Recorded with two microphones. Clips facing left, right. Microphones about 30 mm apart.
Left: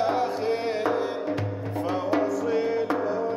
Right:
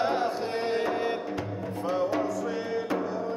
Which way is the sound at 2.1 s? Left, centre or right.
Centre.